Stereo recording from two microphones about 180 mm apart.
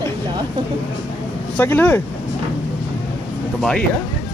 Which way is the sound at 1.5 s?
10° left (ahead or behind).